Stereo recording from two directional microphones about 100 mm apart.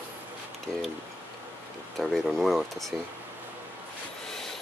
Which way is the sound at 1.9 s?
Centre (ahead or behind).